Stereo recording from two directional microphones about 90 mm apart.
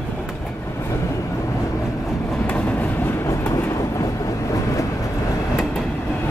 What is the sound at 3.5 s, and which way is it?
Train, 35° left (ahead or behind).